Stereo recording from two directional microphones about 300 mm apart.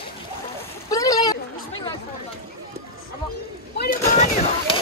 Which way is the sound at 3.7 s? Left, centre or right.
Left.